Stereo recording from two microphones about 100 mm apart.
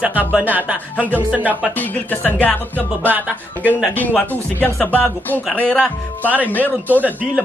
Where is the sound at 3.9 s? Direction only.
15° left (ahead or behind).